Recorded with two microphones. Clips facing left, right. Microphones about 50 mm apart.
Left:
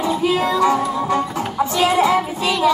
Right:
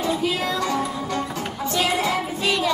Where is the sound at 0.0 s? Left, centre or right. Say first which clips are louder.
Left 5 dB; centre.